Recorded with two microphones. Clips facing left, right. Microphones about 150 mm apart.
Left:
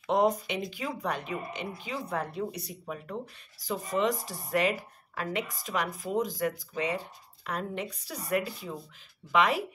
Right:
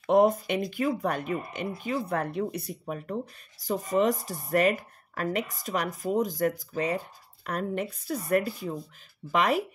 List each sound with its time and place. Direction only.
0.0 s speech: 55° right (ahead or behind)